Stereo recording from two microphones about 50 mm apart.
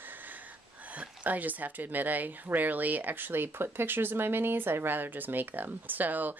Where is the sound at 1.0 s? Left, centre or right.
Right.